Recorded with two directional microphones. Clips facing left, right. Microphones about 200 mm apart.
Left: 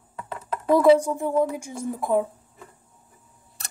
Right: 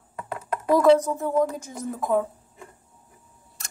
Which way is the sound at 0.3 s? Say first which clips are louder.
Left 1 dB; 10° right (ahead or behind).